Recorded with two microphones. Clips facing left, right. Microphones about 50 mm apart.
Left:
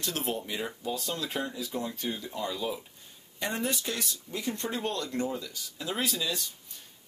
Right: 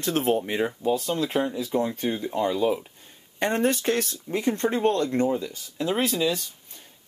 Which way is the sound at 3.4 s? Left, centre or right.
Right.